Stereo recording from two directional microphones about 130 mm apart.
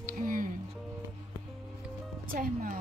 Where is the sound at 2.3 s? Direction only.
90° right.